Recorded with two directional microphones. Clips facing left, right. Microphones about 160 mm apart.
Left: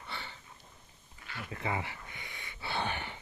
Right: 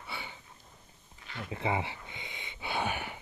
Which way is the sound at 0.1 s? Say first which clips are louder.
Right 2 dB; 10° right (ahead or behind).